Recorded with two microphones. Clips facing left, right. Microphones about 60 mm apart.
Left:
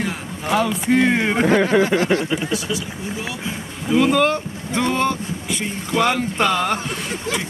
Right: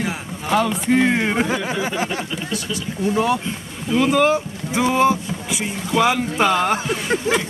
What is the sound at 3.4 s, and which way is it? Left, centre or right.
Speech, centre.